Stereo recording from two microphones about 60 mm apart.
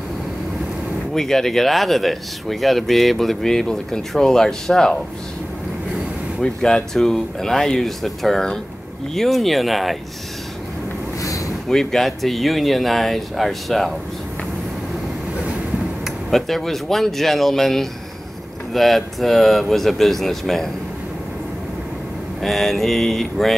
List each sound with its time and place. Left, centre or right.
1.1 s speech: centre
6.4 s speech: centre
11.2 s boat: left
11.7 s speech: centre
16.3 s speech: centre
22.4 s speech: centre